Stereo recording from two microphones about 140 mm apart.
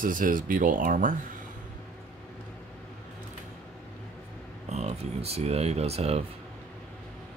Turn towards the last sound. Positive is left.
turn(degrees=-45)  # may be behind; listen again after turning